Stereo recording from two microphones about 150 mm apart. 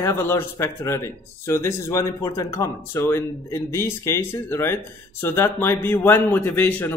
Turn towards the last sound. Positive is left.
turn(degrees=10)  # may be behind; listen again after turning